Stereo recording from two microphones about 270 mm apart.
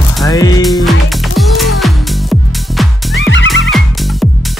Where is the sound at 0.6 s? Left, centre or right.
Centre.